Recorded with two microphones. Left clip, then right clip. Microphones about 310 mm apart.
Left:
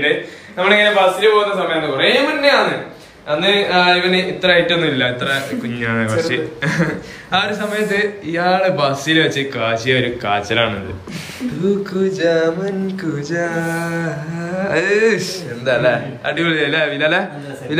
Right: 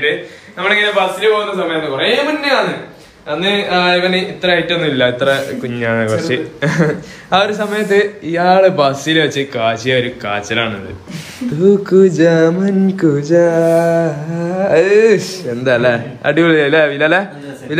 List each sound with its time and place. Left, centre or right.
0.6 s a man's voice: centre
11.6 s a man's voice: centre
15.6 s a man's voice: right
16.3 s a man's voice: centre